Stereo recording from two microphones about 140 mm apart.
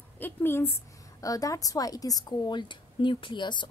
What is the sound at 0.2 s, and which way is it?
A woman's voice, 15° left (ahead or behind).